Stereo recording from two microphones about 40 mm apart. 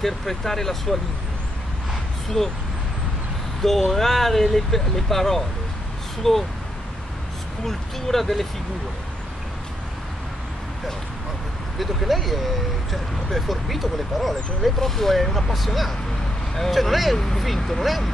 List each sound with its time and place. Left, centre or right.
0.0 s speech: centre
2.2 s speech: centre
3.6 s speech: centre
7.6 s speech: centre
11.8 s speech: centre